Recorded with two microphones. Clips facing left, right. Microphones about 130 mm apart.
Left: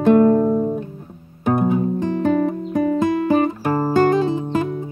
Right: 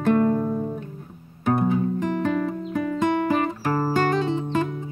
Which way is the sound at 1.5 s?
20° left (ahead or behind).